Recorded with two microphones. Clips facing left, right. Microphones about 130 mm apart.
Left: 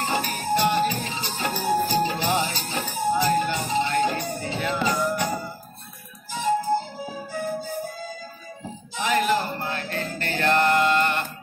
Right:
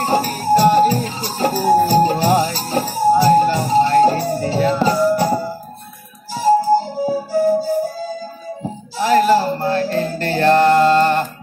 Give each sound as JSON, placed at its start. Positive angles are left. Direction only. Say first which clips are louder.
{"t": 0.0, "sound": "music", "louder": "right 8 dB", "side_deg": -35}